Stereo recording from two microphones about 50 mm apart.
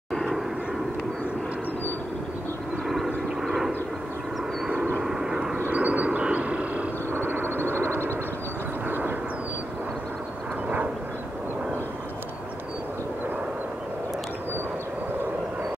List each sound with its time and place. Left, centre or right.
0.1 s vehicle: centre
3.4 s vehicle: centre
5.0 s vehicle: centre
5.7 s a sound: right
7.1 s quack: right
8.8 s vehicle: right